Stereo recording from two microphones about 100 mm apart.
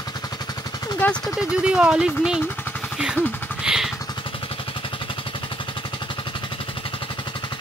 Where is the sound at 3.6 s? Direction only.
5° right (ahead or behind).